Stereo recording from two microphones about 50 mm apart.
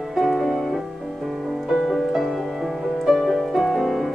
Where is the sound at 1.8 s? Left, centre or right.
Centre.